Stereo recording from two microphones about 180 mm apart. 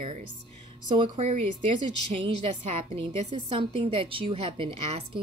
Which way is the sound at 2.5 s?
40° right (ahead or behind).